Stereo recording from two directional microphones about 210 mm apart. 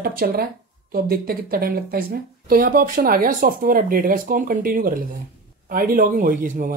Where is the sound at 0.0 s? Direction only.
45° right (ahead or behind).